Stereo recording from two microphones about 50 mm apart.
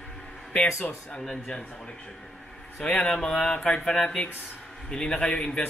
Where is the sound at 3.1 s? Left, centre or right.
Centre.